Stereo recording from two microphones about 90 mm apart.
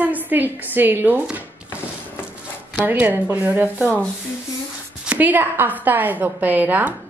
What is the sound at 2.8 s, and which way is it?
A woman's voice, 20° right (ahead or behind).